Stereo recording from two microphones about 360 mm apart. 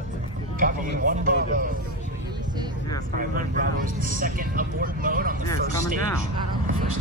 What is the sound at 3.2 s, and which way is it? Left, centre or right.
Speech, right.